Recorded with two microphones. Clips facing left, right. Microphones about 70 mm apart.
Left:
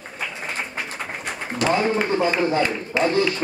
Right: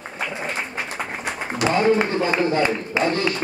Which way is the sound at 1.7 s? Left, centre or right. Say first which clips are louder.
Right 2 dB; centre.